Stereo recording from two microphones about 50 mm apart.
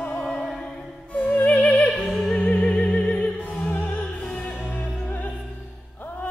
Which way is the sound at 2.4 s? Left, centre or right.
Left.